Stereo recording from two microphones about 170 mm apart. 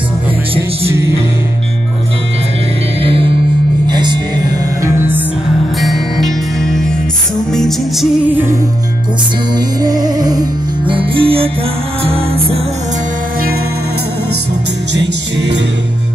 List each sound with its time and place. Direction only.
3.0 s music: 30° right (ahead or behind)
4.8 s music: 15° right (ahead or behind)
5.8 s music: centre (ahead or behind)
9.8 s music: 25° right (ahead or behind)
15.0 s music: 90° right